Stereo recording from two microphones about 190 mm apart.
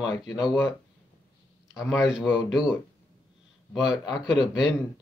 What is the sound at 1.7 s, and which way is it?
Speech, centre (ahead or behind).